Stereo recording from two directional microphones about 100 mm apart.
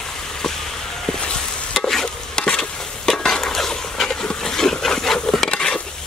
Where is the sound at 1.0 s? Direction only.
10° left (ahead or behind).